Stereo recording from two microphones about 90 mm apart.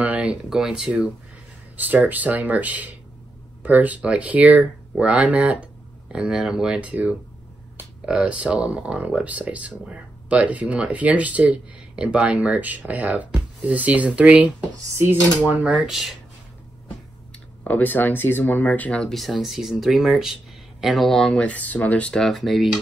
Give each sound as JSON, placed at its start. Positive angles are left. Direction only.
{"t": 0.0, "sound": "speech", "side_deg": -15}
{"t": 15.0, "sound": "dishes", "side_deg": -25}
{"t": 15.4, "sound": "speech", "side_deg": -15}
{"t": 15.9, "sound": "speech", "side_deg": 0}
{"t": 17.6, "sound": "speech", "side_deg": 20}
{"t": 21.4, "sound": "speech", "side_deg": 15}